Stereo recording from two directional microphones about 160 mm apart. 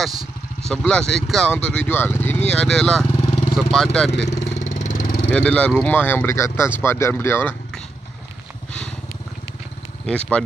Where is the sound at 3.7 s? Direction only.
5° left (ahead or behind).